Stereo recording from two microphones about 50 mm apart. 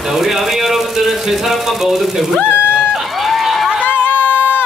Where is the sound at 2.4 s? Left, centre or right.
Left.